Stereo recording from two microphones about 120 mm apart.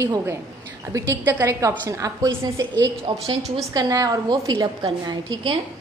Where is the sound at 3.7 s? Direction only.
30° right (ahead or behind).